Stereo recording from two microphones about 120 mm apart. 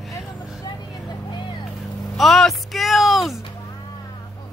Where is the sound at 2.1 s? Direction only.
Centre (ahead or behind).